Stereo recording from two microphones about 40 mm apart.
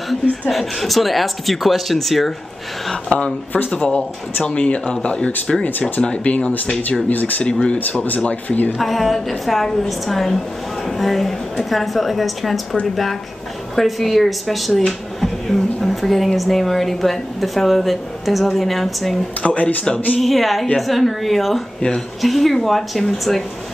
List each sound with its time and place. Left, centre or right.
0.1 s speech: centre
3.7 s speech: left
5.7 s speech: left
6.0 s speech: left
7.1 s speech: left
8.2 s speech: left
8.7 s speech: centre
19.4 s speech: left
20.2 s speech: centre